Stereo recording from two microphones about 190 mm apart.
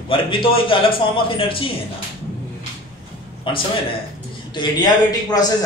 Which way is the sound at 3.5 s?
25° left (ahead or behind).